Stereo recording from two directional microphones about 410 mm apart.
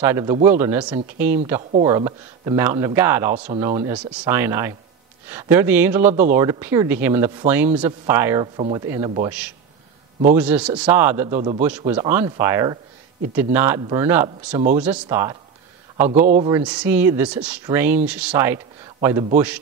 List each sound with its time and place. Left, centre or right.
0.0 s speech: centre
11.3 s speech: centre
14.5 s speech: centre
14.8 s speech: centre
16.3 s speech: centre
16.5 s speech: centre